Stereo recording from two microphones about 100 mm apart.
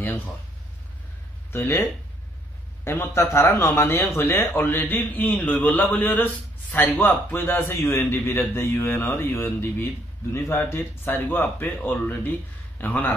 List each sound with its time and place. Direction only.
1.5 s speech: 20° left (ahead or behind)
2.8 s speech: 25° left (ahead or behind)